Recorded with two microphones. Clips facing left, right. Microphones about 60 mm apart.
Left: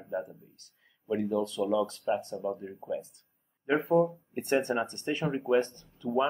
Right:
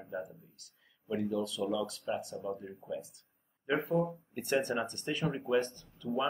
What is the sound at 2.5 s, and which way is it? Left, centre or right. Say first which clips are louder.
Speech: left 4 dB; left.